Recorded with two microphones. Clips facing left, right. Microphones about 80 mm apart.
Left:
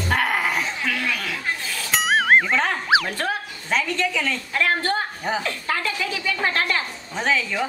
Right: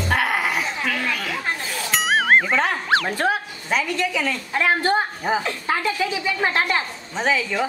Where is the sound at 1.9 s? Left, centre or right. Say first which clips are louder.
Even; centre.